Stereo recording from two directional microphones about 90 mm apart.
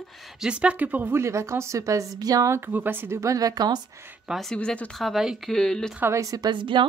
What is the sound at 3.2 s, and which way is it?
Speech, 40° right (ahead or behind).